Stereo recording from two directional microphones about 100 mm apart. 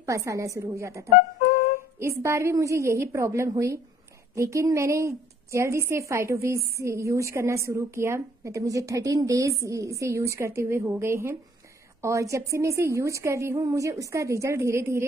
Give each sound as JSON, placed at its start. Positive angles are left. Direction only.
{"t": 0.0, "sound": "a woman's voice", "side_deg": -30}